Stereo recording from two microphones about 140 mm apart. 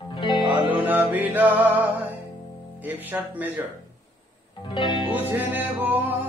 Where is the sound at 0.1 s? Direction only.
35° left (ahead or behind).